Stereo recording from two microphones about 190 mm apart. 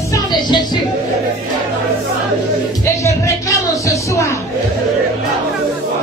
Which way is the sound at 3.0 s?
15° left (ahead or behind).